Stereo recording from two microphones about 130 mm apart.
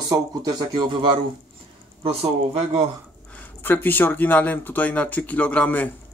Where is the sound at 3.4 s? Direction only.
15° left (ahead or behind).